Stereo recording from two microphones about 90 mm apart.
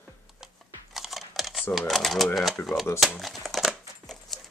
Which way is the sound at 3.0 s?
Centre (ahead or behind).